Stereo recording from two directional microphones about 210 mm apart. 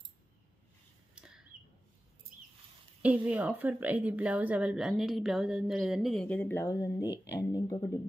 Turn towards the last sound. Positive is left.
turn(degrees=15)  # may be behind; listen again after turning